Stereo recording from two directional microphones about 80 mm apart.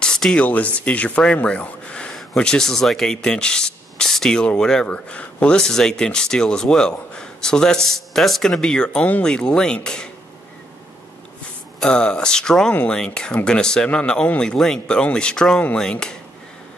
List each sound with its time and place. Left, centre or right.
0.0 s a sound: centre
0.4 s speech: centre
0.7 s rub: centre
11.8 s rub: centre